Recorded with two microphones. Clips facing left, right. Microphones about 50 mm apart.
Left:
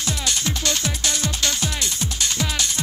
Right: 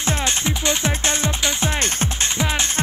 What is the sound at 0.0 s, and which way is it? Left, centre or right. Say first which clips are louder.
Music: right 3 dB; right.